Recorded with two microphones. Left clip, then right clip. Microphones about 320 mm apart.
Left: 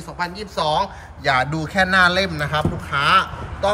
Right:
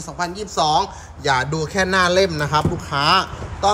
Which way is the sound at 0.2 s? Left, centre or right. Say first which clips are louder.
Right 2 dB; centre.